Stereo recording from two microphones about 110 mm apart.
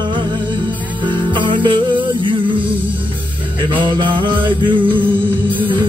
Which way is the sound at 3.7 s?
50° right (ahead or behind).